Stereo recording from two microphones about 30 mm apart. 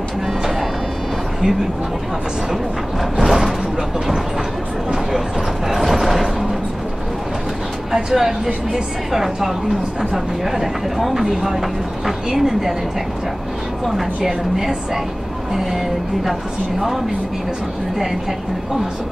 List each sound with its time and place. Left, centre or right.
3.2 s a sound: centre
5.7 s clip-clop: centre
7.9 s speech: centre
14.2 s speech: centre